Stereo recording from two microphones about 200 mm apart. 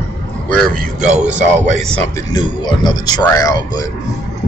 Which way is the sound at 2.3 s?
20° left (ahead or behind).